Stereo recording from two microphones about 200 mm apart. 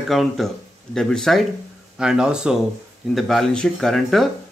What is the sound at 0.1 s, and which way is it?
Speech, centre (ahead or behind).